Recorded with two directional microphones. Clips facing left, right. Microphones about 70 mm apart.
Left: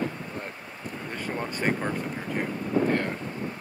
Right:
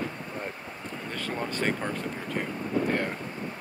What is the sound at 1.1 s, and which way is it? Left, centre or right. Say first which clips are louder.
Speech: even; left.